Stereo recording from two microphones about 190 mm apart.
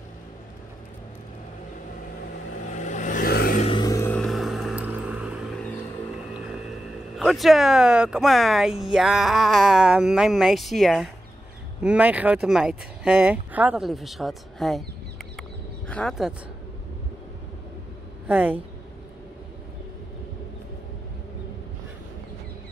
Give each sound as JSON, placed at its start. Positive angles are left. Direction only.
{"t": 2.7, "sound": "vehicle", "side_deg": 40}
{"t": 3.6, "sound": "vehicle", "side_deg": 20}
{"t": 4.2, "sound": "vehicle", "side_deg": 0}
{"t": 6.3, "sound": "speech", "side_deg": -5}
{"t": 18.2, "sound": "speech", "side_deg": -10}